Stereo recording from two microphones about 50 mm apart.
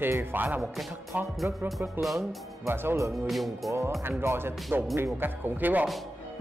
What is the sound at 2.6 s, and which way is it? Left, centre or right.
Speech, right.